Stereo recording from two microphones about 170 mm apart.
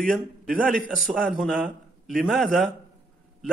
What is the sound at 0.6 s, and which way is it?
A man's voice, centre (ahead or behind).